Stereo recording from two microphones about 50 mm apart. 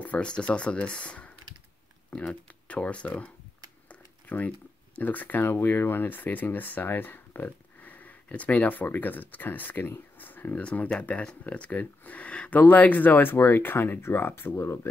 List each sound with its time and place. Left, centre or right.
0.0 s speech: left
3.9 s computer keyboard: left
4.9 s speech: left
10.6 s speech: left
14.6 s speech: left